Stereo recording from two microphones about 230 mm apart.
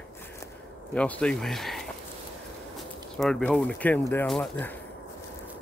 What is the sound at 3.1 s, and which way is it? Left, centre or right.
Speech, centre.